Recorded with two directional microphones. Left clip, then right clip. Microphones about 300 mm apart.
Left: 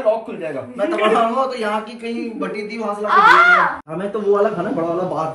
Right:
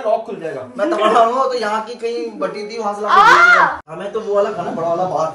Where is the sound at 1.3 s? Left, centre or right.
Right.